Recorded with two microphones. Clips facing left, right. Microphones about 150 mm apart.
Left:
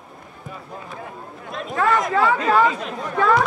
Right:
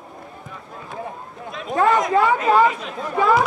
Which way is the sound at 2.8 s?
5° right (ahead or behind).